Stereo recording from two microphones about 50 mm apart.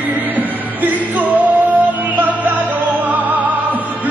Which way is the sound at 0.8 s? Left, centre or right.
Right.